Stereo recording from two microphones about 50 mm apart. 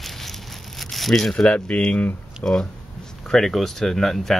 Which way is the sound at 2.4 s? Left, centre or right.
Centre.